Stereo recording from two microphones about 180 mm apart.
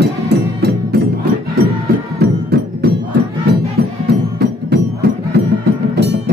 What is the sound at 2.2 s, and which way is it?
Music, 65° right (ahead or behind).